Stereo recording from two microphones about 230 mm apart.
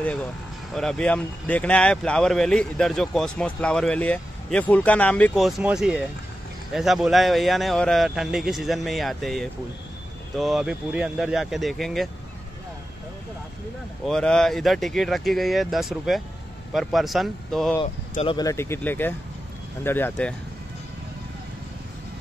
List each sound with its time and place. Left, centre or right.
0.7 s speech: centre
14.0 s speech: centre
18.1 s speech: left; by 20.3 s centre